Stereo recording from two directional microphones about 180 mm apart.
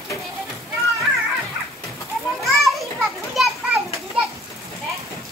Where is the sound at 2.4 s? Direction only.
Centre (ahead or behind).